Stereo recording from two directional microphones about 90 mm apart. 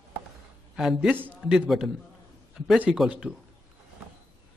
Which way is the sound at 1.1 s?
20° right (ahead or behind).